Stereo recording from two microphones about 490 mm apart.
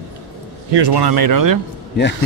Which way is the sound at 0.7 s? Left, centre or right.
Right.